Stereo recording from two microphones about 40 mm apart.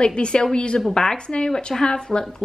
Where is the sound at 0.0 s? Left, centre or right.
Left.